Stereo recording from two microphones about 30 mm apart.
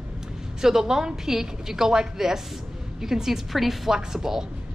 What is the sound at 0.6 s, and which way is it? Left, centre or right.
Speech, centre.